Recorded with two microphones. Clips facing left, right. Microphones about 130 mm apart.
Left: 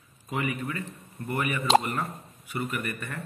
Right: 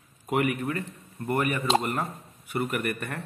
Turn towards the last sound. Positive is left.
turn(degrees=-65)  # may be behind; listen again after turning